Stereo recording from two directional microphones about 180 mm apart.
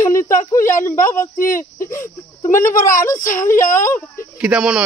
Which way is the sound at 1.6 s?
15° left (ahead or behind).